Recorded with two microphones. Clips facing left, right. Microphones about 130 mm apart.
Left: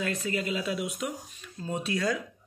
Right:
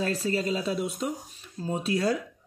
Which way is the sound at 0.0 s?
35° right (ahead or behind).